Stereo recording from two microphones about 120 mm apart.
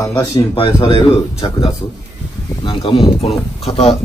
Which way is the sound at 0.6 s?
45° left (ahead or behind).